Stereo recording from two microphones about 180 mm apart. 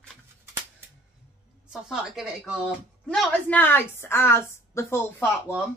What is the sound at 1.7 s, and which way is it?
A woman's voice, centre (ahead or behind).